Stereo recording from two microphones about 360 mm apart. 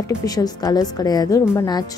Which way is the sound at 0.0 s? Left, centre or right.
Centre.